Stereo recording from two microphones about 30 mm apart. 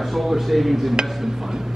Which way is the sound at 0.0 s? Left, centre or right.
Centre.